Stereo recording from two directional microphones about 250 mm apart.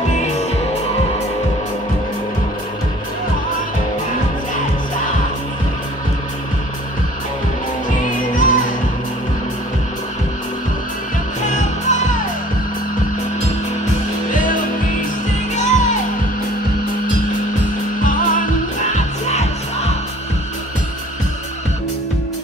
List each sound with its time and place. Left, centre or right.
8.4 s music: left
11.4 s music: left
14.3 s music: left
18.0 s music: left